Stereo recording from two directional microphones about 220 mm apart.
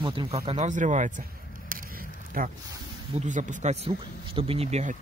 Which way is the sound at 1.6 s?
40° right (ahead or behind).